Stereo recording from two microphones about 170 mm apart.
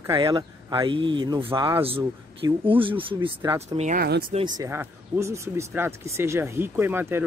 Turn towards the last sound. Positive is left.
turn(degrees=-15)  # may be behind; listen again after turning